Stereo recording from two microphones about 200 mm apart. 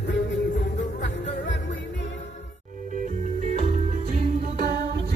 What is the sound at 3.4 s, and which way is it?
Music, 35° right (ahead or behind).